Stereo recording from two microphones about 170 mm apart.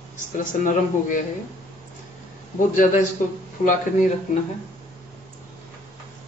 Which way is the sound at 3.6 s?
45° left (ahead or behind).